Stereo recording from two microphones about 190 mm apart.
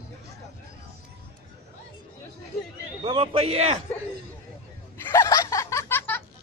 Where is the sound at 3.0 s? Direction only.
30° right (ahead or behind).